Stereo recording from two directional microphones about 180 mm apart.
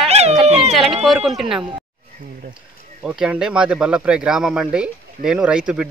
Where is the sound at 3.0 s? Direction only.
5° right (ahead or behind).